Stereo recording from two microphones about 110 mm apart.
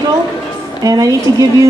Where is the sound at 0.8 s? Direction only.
35° right (ahead or behind).